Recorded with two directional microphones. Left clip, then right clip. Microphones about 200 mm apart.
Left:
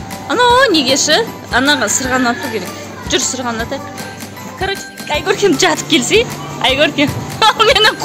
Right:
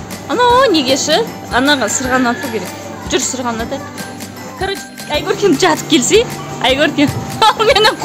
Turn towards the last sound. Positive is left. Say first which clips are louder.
# even
turn(degrees=0)  # may be behind; listen again after turning